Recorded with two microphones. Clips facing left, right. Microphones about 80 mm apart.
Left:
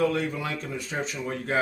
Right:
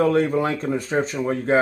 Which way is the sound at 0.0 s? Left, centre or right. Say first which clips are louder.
Right 7 dB; right.